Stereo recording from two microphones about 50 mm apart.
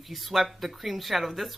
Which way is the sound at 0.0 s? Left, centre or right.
Centre.